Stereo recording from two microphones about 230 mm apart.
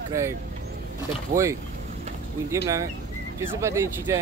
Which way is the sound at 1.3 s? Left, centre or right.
Right.